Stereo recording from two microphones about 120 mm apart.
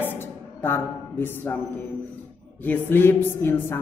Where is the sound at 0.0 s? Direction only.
15° left (ahead or behind).